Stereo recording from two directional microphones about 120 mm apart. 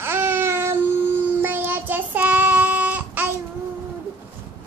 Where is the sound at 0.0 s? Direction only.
20° right (ahead or behind).